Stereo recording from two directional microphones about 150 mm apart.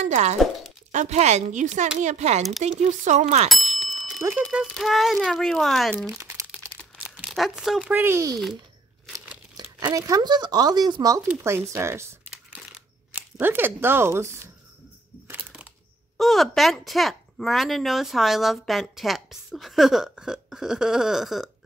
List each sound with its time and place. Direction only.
0.0 s a woman's voice: 50° right (ahead or behind)
3.4 s bicycle bell: centre (ahead or behind)
4.2 s speech: 10° right (ahead or behind)
6.1 s crumpling: 15° right (ahead or behind)
7.0 s speech: 5° right (ahead or behind)
9.3 s crumpling: 15° right (ahead or behind)
9.8 s speech: 25° right (ahead or behind)
12.3 s crumpling: 5° right (ahead or behind)
15.2 s a sound: 10° right (ahead or behind)
16.2 s speech: centre (ahead or behind)